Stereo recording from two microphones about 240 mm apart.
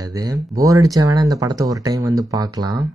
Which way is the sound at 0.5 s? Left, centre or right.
Centre.